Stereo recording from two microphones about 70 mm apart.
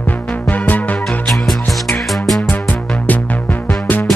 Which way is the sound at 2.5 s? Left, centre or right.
Left.